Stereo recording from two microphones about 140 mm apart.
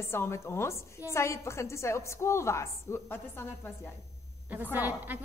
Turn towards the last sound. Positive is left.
turn(degrees=-15)  # may be behind; listen again after turning